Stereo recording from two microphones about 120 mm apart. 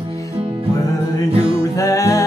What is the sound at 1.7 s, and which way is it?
Music, 25° left (ahead or behind).